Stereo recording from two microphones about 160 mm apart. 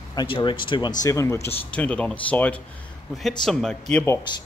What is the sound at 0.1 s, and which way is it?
Speech, 25° left (ahead or behind).